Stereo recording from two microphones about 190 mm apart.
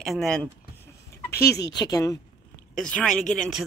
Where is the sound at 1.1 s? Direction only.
15° left (ahead or behind).